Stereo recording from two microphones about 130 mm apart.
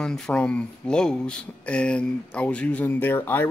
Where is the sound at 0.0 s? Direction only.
5° left (ahead or behind).